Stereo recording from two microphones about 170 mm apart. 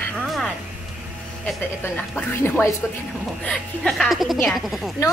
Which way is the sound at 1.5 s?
10° left (ahead or behind).